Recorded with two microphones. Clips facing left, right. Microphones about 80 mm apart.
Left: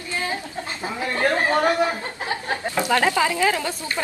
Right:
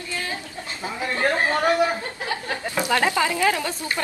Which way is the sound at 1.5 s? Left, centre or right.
Left.